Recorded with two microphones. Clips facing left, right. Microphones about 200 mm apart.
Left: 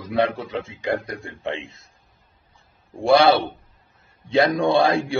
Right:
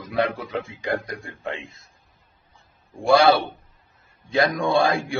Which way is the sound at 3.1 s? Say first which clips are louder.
Left 1 dB; 25° left (ahead or behind).